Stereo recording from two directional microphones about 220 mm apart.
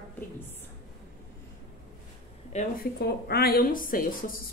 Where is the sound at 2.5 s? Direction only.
30° left (ahead or behind).